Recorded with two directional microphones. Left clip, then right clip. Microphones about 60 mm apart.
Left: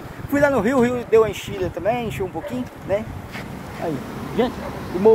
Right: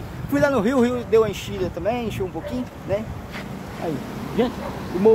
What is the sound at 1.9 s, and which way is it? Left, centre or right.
Speech, right.